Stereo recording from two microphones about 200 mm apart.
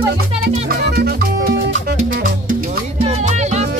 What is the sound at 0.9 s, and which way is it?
Music, 50° right (ahead or behind).